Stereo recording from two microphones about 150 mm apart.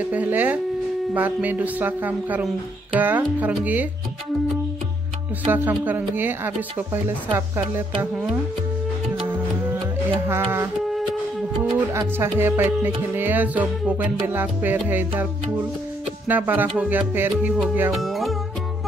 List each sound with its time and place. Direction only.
0.1 s music: 10° right (ahead or behind)
5.5 s music: 10° right (ahead or behind)
11.9 s music: 15° right (ahead or behind)
17.9 s music: centre (ahead or behind)